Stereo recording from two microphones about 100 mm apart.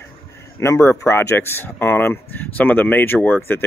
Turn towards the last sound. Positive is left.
turn(degrees=20)  # may be behind; listen again after turning